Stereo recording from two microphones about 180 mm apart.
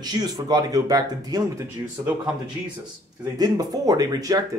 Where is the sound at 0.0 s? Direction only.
20° right (ahead or behind).